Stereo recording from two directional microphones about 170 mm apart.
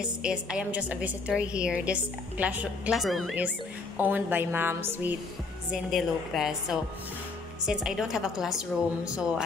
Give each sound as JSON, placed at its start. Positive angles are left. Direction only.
{"t": 0.0, "sound": "a woman's voice", "side_deg": -5}
{"t": 5.7, "sound": "a woman's voice", "side_deg": 0}